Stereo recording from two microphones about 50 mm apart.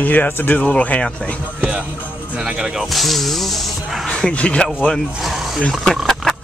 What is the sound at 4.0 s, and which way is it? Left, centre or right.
Speech, centre.